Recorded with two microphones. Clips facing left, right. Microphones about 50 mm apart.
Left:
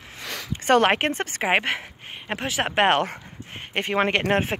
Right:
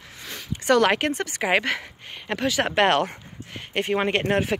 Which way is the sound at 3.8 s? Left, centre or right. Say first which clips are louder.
Left 1 dB; left.